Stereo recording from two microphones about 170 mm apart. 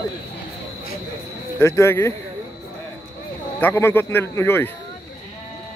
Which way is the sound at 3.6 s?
15° left (ahead or behind).